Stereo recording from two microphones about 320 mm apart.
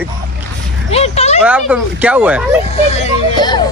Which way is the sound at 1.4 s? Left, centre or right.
Centre.